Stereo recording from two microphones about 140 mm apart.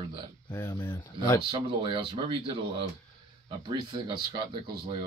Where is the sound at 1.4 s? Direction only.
35° right (ahead or behind).